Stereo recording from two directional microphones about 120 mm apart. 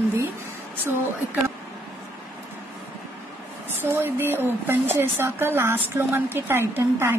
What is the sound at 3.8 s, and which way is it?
A woman's voice, 20° right (ahead or behind).